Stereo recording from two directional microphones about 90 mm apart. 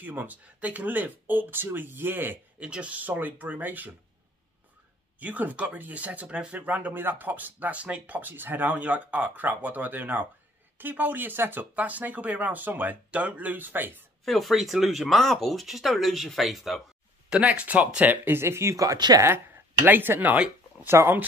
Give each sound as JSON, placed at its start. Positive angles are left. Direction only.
{"t": 0.0, "sound": "speech", "side_deg": -20}
{"t": 5.2, "sound": "speech", "side_deg": -20}
{"t": 14.2, "sound": "speech", "side_deg": 0}
{"t": 17.3, "sound": "speech", "side_deg": -10}
{"t": 18.9, "sound": "speech", "side_deg": -50}
{"t": 19.2, "sound": "speech", "side_deg": -30}